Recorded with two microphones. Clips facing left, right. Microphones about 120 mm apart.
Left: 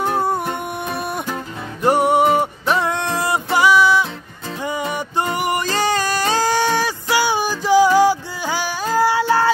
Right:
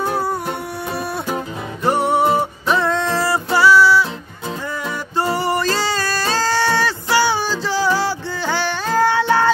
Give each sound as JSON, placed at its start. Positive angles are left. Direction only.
{"t": 0.0, "sound": "music", "side_deg": 25}
{"t": 1.8, "sound": "music", "side_deg": 10}
{"t": 5.3, "sound": "a sound", "side_deg": 15}